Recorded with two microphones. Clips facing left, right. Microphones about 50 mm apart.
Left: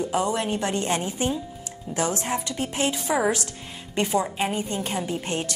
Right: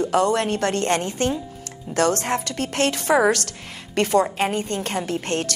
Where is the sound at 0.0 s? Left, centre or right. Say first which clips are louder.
Right 5 dB; right.